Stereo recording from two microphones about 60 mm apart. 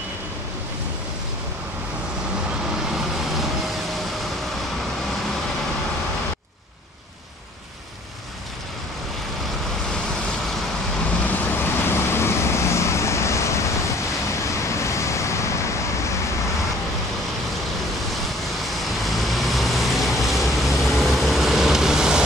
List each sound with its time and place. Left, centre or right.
11.2 s vehicle: left
19.0 s vehicle: centre